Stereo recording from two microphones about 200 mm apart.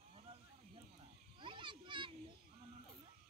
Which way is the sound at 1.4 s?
25° right (ahead or behind).